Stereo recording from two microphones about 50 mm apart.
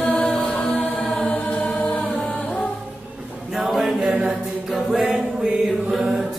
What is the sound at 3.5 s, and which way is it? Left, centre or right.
Chant, centre.